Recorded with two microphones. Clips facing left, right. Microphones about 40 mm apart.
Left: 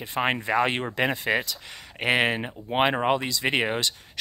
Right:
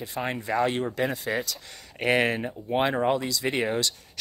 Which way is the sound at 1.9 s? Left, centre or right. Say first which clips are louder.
Even; left.